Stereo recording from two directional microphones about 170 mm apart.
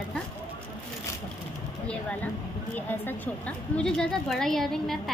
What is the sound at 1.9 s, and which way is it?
A woman's voice, 5° left (ahead or behind).